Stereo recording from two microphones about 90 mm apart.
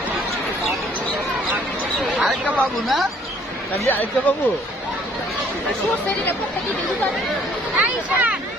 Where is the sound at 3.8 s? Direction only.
20° left (ahead or behind).